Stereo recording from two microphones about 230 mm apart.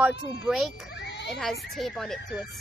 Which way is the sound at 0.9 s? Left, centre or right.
Left.